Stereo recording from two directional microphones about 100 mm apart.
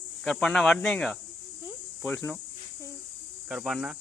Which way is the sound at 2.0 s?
20° left (ahead or behind).